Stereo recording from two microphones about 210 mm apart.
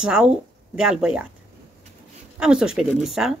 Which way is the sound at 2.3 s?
5° right (ahead or behind).